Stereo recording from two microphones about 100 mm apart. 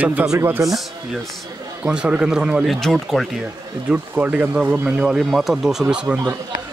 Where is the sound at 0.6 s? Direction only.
Centre (ahead or behind).